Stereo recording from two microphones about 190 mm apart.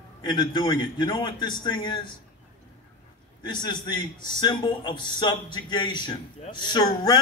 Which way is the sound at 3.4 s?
20° left (ahead or behind).